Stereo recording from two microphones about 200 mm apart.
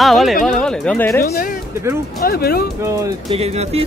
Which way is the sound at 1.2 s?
50° left (ahead or behind).